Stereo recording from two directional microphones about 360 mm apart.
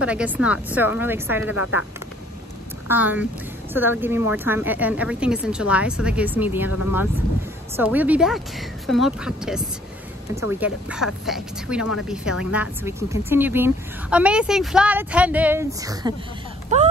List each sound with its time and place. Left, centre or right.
0.0 s speech: centre
1.6 s speech: left
2.9 s speech: centre
7.7 s speech: centre